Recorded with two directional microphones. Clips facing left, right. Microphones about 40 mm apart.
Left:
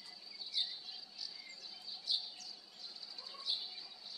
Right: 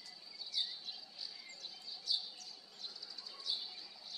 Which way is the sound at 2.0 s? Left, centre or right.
Left.